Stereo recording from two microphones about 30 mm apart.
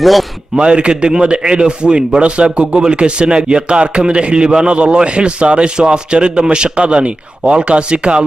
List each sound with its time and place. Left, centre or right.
0.0 s a man's voice: centre
0.6 s a man's voice: right
2.7 s a man's voice: right